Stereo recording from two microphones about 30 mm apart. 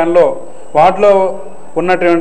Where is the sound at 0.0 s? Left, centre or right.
Centre.